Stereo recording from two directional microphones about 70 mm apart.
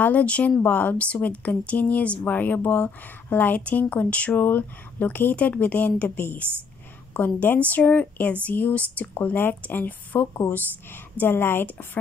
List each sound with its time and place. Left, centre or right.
0.0 s speech: centre
4.4 s a woman's voice: left